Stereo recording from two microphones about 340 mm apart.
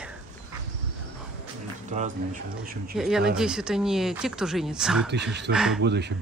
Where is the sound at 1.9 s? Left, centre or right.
Right.